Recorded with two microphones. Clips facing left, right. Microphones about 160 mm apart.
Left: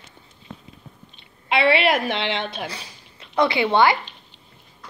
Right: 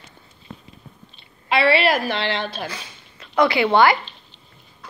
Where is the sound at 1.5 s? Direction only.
20° left (ahead or behind).